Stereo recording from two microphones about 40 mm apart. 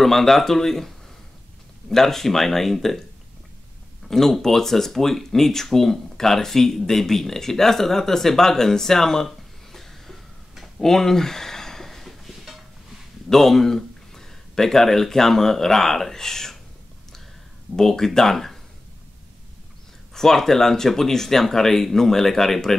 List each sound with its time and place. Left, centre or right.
0.0 s speech: centre
4.1 s speech: centre
10.6 s a sound: centre
13.3 s speech: centre
17.7 s speech: centre
20.2 s speech: centre